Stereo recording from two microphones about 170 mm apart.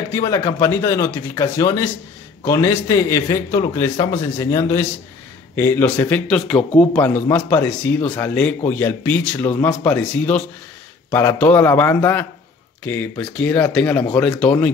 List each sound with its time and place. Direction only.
0.1 s speech: 20° left (ahead or behind)